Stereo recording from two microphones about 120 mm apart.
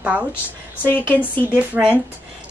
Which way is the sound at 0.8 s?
15° left (ahead or behind).